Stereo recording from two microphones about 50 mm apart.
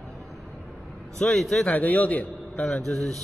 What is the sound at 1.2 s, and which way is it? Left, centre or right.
Speech, centre.